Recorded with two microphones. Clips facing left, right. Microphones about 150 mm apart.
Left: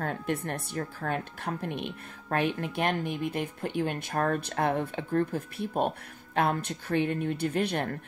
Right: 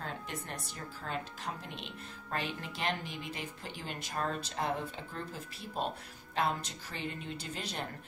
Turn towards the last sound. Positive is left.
turn(degrees=60)  # may be behind; listen again after turning